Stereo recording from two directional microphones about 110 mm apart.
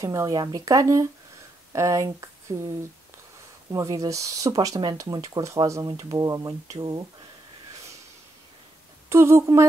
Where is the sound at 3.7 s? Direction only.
30° right (ahead or behind).